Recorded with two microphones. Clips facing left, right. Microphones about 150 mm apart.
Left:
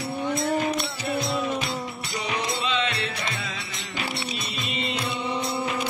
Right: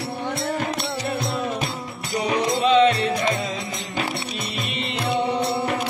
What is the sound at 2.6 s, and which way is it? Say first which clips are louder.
Music: right 11 dB; 45° right (ahead or behind).